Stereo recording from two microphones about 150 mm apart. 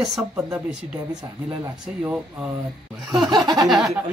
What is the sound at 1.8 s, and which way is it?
Speech, 5° right (ahead or behind).